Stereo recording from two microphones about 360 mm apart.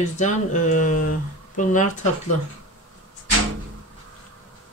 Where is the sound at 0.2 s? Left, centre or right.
Left.